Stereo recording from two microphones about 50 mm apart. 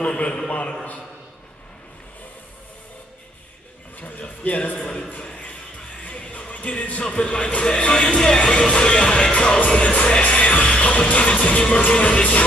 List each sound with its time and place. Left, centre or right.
0.0 s music: centre
0.5 s music: left
4.0 s speech: left
5.2 s a sound: left
6.0 s speech: left
9.7 s music: left